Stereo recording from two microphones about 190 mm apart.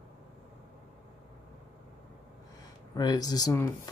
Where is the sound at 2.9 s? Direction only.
20° left (ahead or behind).